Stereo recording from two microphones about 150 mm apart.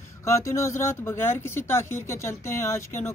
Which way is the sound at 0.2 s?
20° left (ahead or behind).